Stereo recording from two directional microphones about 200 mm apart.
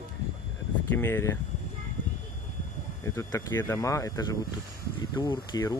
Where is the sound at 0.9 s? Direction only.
10° left (ahead or behind).